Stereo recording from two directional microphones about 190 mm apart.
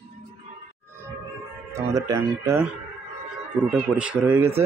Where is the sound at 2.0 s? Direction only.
15° right (ahead or behind).